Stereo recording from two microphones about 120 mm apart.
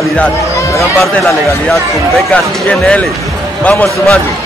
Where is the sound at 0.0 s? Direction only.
10° left (ahead or behind).